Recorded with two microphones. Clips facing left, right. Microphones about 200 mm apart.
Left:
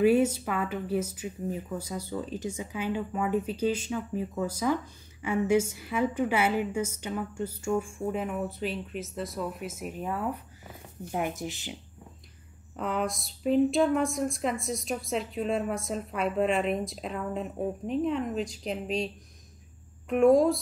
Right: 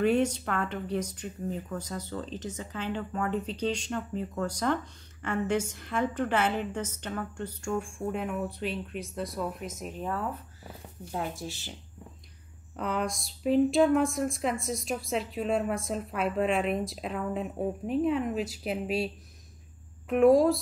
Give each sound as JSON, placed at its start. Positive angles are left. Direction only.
{"t": 0.0, "sound": "a woman's voice", "side_deg": 10}
{"t": 12.7, "sound": "speech", "side_deg": 0}
{"t": 20.1, "sound": "speech", "side_deg": 0}